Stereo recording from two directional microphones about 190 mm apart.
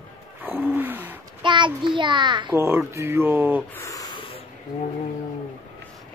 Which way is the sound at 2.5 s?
15° right (ahead or behind).